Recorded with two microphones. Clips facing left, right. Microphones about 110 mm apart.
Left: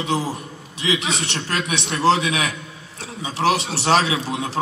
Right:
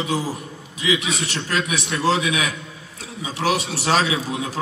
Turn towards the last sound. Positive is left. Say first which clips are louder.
# even
turn(degrees=30)  # may be behind; listen again after turning